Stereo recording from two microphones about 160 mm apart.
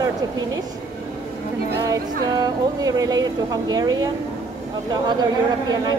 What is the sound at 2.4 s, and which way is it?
Speech, 25° right (ahead or behind).